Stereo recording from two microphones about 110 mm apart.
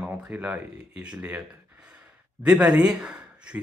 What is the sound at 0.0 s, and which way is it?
Speech, 15° right (ahead or behind).